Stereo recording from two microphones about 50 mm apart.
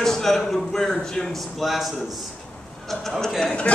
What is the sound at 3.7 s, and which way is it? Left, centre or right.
Speech, left.